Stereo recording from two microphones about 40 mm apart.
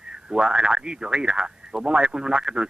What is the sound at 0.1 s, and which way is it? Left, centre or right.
Speech, right.